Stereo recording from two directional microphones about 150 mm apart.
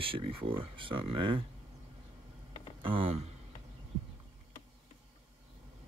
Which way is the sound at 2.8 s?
35° right (ahead or behind).